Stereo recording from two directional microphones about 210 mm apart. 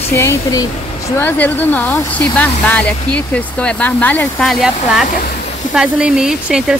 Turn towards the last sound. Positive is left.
turn(degrees=-5)  # may be behind; listen again after turning